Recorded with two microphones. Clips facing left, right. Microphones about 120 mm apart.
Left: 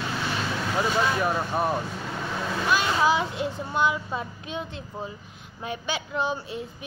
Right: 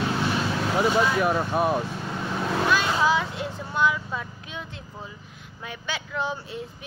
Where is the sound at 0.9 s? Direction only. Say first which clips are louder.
Right 2 dB; 5° right (ahead or behind).